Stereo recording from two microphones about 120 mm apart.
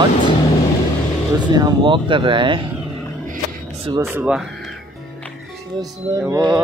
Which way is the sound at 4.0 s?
20° right (ahead or behind).